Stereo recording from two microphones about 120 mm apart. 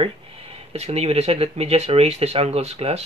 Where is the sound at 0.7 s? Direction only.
60° right (ahead or behind).